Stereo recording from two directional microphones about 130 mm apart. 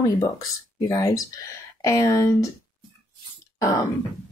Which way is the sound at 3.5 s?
25° left (ahead or behind).